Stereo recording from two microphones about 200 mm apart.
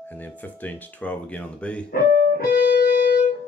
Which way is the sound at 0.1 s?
10° left (ahead or behind).